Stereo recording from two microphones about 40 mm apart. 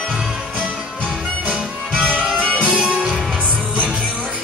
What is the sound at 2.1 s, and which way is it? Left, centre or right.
Music, right.